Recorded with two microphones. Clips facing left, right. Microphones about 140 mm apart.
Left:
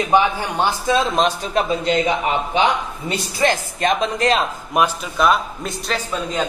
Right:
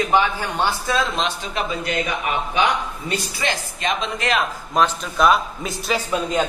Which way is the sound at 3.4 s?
45° left (ahead or behind).